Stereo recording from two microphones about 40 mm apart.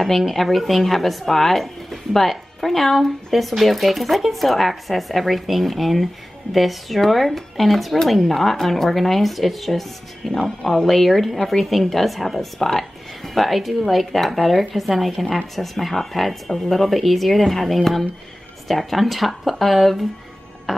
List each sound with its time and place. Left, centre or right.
0.0 s speech: centre